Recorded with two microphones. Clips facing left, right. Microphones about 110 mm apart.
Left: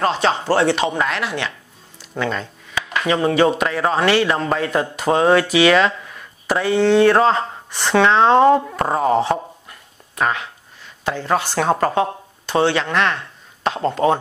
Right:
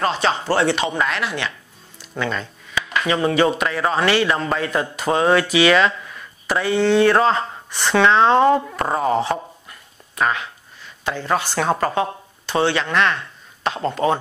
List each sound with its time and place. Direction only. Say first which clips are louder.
0.0 s speech: left 2 dB; 40° left (ahead or behind)
10.1 s speech: even; 45° left (ahead or behind)